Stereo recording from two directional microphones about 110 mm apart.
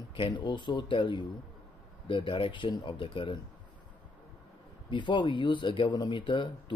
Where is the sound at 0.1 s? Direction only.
50° left (ahead or behind).